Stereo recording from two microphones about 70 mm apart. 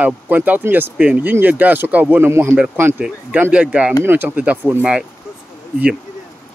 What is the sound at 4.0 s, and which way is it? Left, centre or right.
Speech, right.